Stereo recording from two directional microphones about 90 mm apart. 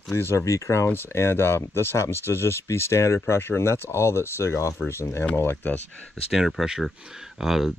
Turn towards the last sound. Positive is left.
turn(degrees=-5)  # may be behind; listen again after turning